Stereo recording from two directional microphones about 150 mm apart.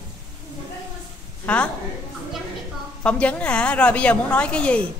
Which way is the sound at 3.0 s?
10° left (ahead or behind).